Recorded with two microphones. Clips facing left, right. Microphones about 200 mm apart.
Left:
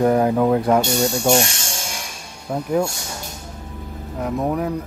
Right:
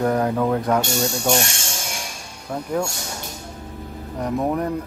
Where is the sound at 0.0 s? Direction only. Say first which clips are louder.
Left 4 dB; 15° left (ahead or behind).